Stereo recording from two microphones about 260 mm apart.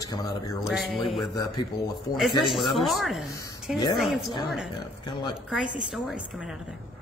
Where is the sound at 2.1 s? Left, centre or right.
Centre.